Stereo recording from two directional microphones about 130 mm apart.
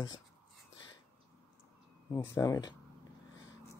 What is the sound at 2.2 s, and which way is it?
Speech, 30° left (ahead or behind).